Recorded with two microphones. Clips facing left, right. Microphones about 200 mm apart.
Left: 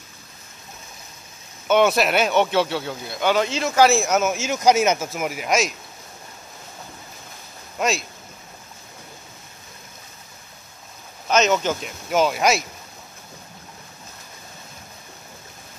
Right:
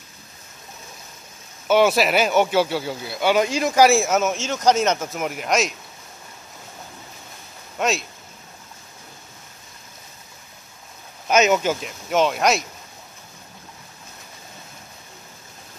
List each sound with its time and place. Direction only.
1.7 s speech: 5° right (ahead or behind)
7.8 s speech: centre (ahead or behind)
11.2 s speech: 10° right (ahead or behind)